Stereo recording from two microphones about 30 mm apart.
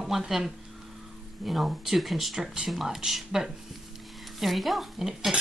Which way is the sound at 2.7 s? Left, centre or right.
Centre.